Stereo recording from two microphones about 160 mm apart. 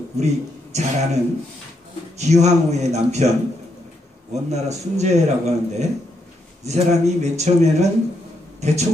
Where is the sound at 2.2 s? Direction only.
45° right (ahead or behind).